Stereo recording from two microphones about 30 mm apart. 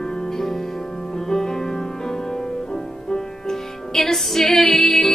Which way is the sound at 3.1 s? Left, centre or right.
Centre.